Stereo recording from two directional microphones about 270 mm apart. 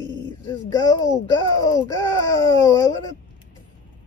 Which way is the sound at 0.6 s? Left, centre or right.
Centre.